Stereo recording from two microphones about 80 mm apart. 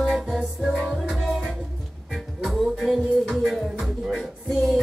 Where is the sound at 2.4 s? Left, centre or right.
Centre.